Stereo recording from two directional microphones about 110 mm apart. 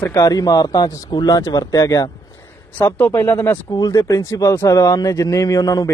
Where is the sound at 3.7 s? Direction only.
35° left (ahead or behind).